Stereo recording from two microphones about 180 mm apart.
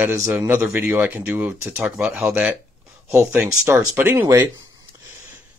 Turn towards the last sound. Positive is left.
turn(degrees=-15)  # may be behind; listen again after turning